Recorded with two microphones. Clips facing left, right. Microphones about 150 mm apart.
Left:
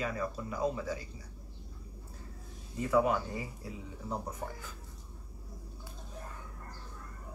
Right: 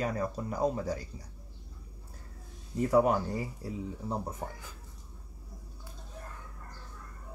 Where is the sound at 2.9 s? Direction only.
40° right (ahead or behind).